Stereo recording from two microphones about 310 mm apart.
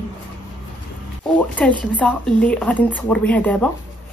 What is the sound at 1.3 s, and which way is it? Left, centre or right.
Speech, centre.